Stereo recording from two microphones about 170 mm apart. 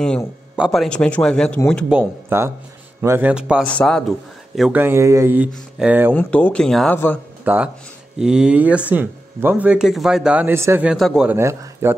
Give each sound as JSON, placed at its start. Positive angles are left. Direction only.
{"t": 0.6, "sound": "speech", "side_deg": 0}
{"t": 1.9, "sound": "speech", "side_deg": -10}
{"t": 3.6, "sound": "speech", "side_deg": 5}
{"t": 4.8, "sound": "speech", "side_deg": -15}
{"t": 6.1, "sound": "speech", "side_deg": 10}
{"t": 7.4, "sound": "speech", "side_deg": -10}
{"t": 11.2, "sound": "speech", "side_deg": -15}